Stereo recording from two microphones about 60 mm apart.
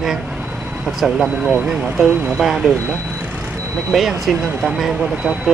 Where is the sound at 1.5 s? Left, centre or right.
Centre.